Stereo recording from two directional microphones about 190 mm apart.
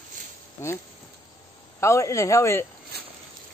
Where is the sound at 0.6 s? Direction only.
15° left (ahead or behind).